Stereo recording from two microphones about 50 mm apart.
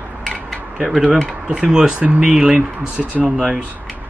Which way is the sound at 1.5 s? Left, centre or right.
Centre.